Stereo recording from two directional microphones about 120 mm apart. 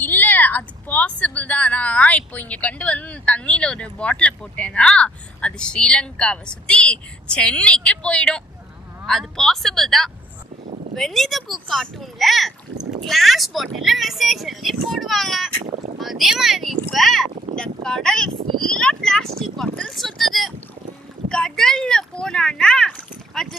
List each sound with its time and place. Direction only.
0.0 s speech: 15° left (ahead or behind)
15.6 s boat: 90° right
16.0 s speech: centre (ahead or behind)